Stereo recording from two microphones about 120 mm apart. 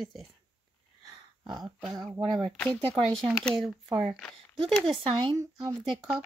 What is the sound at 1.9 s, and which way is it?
Speech, 35° right (ahead or behind).